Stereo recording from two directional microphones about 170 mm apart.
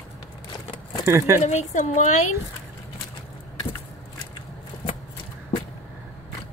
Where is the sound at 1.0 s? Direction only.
15° right (ahead or behind).